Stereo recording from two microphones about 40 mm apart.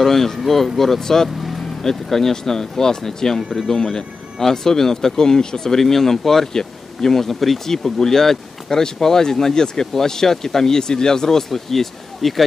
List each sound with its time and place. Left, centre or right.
0.0 s speech: centre
1.4 s vehicle: centre
1.8 s speech: centre